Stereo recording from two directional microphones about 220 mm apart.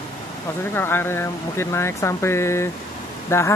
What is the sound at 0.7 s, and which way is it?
Speech, 10° left (ahead or behind).